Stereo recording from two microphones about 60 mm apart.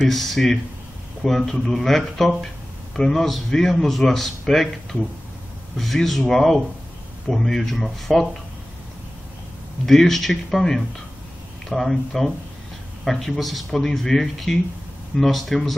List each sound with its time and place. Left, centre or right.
0.1 s a man's voice: centre
5.8 s a man's voice: centre
9.8 s a man's voice: centre